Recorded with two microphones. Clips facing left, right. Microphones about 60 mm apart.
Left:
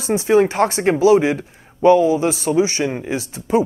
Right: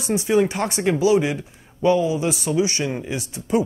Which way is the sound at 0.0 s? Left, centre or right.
Left.